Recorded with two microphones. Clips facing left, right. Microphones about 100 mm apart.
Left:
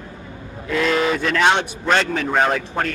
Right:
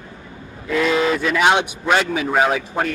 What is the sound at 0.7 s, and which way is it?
A man's voice, centre (ahead or behind).